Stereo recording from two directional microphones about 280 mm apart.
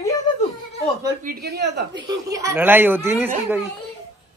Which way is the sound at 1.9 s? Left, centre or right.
Centre.